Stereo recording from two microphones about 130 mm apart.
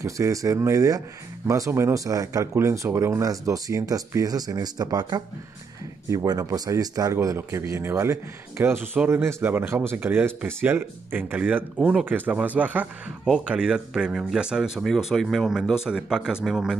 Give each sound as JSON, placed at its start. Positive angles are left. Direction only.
{"t": 0.0, "sound": "a man's voice", "side_deg": -25}